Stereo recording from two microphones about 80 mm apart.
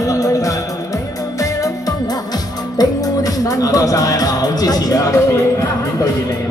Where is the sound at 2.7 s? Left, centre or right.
Left.